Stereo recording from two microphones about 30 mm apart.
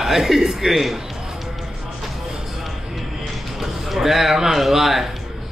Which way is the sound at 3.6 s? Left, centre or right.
Centre.